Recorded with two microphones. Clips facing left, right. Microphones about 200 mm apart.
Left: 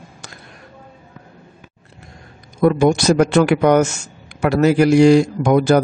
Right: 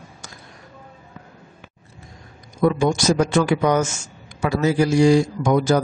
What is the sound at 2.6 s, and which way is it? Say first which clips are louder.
A man's voice: left 4 dB; 65° left (ahead or behind).